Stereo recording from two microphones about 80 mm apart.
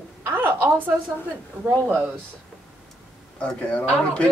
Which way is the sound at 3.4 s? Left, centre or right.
Centre.